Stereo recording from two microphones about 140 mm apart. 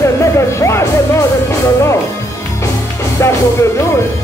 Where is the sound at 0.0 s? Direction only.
20° left (ahead or behind).